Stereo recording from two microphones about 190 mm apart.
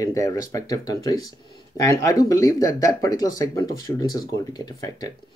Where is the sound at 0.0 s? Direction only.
15° left (ahead or behind).